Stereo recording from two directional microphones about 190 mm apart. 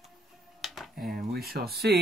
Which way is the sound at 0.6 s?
Centre (ahead or behind).